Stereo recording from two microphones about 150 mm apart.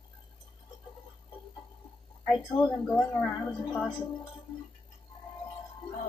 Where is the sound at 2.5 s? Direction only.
20° left (ahead or behind).